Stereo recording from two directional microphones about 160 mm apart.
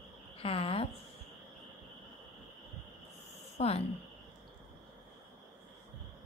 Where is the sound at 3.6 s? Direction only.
40° left (ahead or behind).